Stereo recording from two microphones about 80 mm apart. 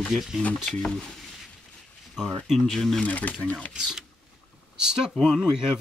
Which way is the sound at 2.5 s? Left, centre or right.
Centre.